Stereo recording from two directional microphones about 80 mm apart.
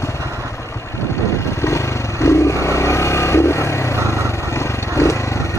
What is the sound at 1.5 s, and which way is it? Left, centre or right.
Vehicle, left.